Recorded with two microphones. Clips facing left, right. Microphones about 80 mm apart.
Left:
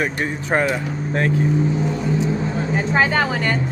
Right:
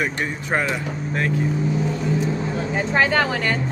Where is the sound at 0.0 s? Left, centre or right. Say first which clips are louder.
Left 2 dB; left.